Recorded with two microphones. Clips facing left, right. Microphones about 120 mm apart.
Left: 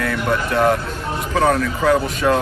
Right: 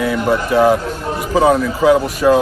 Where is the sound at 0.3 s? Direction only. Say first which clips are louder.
Right 4 dB; 5° right (ahead or behind).